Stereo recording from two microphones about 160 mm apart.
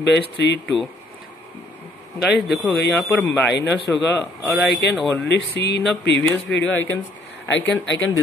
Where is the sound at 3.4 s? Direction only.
90° left.